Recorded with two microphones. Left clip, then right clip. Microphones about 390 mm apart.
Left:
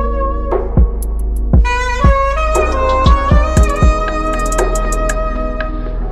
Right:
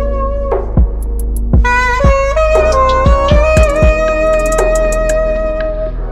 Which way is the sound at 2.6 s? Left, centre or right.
Centre.